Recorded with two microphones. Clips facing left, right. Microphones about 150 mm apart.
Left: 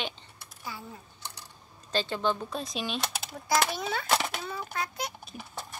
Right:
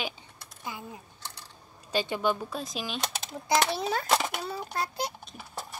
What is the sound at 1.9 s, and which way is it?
Speech, 15° right (ahead or behind).